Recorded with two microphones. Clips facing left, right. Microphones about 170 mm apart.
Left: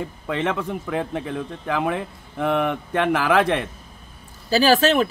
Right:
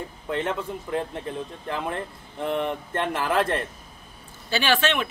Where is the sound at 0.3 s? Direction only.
80° left.